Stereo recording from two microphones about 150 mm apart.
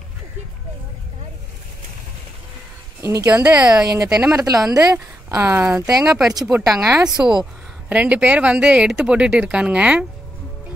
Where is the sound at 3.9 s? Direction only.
25° right (ahead or behind).